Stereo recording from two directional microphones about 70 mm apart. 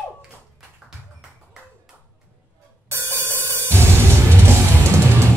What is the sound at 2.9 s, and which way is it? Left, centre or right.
Music, right.